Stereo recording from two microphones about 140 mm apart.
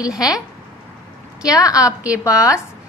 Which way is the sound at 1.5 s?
25° left (ahead or behind).